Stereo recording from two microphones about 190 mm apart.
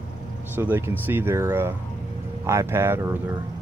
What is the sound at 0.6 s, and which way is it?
Speech, 10° right (ahead or behind).